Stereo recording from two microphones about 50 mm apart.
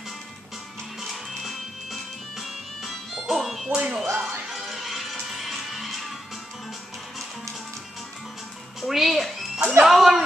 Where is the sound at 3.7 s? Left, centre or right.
Centre.